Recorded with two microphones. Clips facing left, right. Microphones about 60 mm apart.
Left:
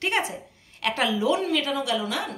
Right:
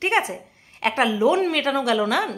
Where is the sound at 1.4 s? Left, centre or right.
Right.